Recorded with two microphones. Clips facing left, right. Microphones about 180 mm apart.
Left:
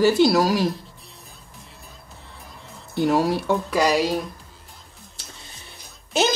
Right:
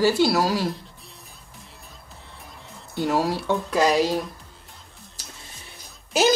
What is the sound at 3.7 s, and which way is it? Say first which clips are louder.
Speech: right 1 dB; centre (ahead or behind).